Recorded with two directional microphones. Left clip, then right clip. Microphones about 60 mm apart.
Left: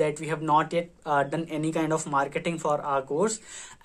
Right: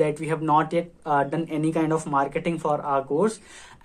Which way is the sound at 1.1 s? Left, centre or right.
Left.